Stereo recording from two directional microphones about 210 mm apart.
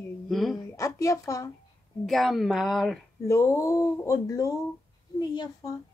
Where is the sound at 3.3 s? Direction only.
15° left (ahead or behind).